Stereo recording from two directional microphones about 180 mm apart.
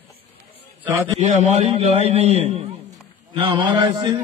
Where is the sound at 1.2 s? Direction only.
40° right (ahead or behind).